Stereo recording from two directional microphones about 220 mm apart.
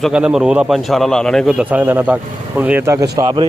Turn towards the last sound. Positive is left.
turn(degrees=-15)  # may be behind; listen again after turning